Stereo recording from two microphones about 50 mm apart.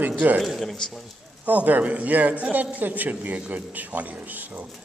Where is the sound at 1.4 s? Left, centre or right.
Right.